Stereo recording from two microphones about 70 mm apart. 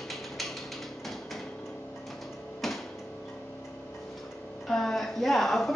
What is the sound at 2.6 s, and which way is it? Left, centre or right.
Music, centre.